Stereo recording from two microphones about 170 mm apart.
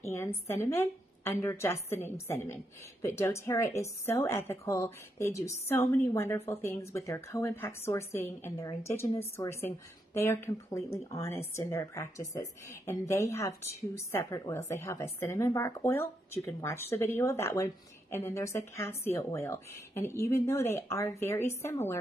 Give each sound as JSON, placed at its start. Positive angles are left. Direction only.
{"t": 0.0, "sound": "a woman's voice", "side_deg": 15}